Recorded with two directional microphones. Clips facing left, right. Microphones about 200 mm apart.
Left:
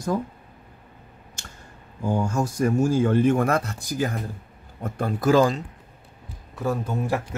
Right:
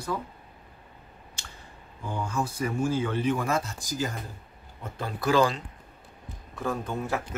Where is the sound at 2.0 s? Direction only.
45° left (ahead or behind).